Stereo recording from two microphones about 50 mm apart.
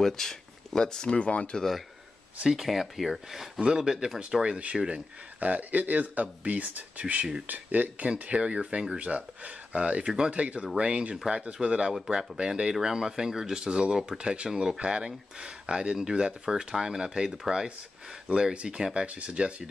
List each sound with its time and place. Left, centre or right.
0.0 s speech: centre; by 1.6 s left
2.5 s speech: centre
4.4 s speech: right
8.1 s speech: right